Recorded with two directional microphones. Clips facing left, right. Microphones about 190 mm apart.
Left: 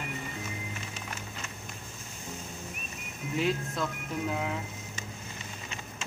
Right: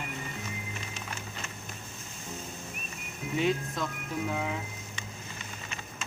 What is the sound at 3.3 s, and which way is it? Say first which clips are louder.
Speech: right 1 dB; centre (ahead or behind).